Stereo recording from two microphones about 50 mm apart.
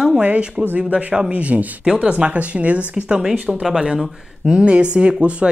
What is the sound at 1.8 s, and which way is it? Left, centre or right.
Speech, centre.